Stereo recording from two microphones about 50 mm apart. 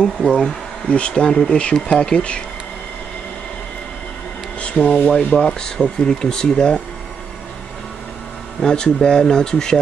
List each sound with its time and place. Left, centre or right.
0.2 s speech: centre
0.8 s speech: left
4.6 s speech: left
5.3 s speech: centre
8.5 s speech: centre